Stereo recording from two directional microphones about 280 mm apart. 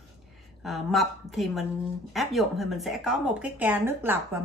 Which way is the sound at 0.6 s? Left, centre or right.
Centre.